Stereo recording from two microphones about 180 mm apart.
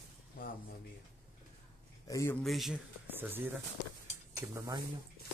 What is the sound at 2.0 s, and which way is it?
Speech, 15° left (ahead or behind).